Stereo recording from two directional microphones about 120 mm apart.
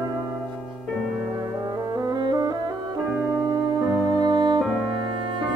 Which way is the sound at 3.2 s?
30° right (ahead or behind).